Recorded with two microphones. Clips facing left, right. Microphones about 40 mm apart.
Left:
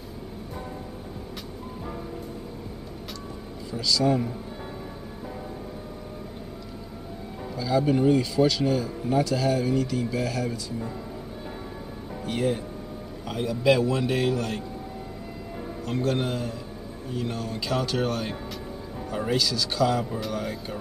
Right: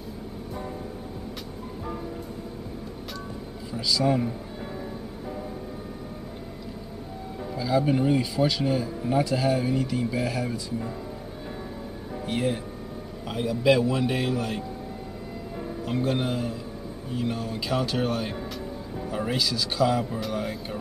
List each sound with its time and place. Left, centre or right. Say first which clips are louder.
3.7 s a man's voice: left 1 dB; centre
7.5 s a man's voice: even; centre
12.3 s a man's voice: left 1 dB; centre
15.9 s a man's voice: even; centre